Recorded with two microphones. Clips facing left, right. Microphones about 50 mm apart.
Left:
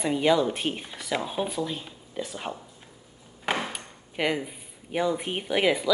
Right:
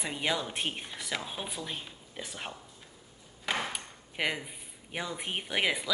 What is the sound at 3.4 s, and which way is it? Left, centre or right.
Ping, left.